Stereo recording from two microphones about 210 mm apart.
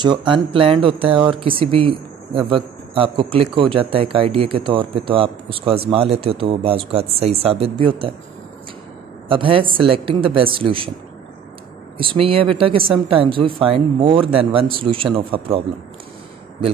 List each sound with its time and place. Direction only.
0.0 s speech: 20° right (ahead or behind)
9.3 s speech: 25° right (ahead or behind)
12.0 s speech: 25° right (ahead or behind)